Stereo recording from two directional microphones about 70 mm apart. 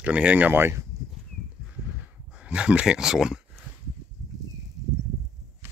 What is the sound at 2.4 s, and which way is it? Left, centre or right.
Speech, centre.